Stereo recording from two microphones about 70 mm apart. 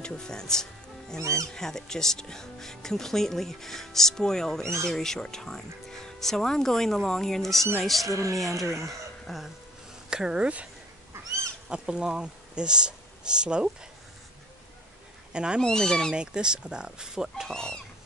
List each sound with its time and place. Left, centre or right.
0.0 s speech: centre
1.2 s speech: right
1.5 s speech: centre
8.1 s speech: right
9.3 s speech: centre
11.7 s speech: centre
15.3 s speech: centre
15.6 s speech: centre
16.2 s speech: centre
17.5 s speech: centre